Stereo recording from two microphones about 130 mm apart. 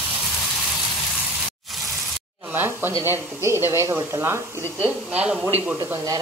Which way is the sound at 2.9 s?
20° right (ahead or behind).